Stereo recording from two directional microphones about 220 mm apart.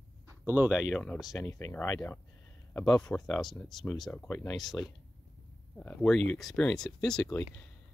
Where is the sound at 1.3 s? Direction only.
15° left (ahead or behind).